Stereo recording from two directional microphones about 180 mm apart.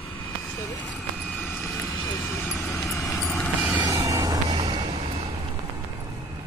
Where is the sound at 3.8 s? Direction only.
20° right (ahead or behind).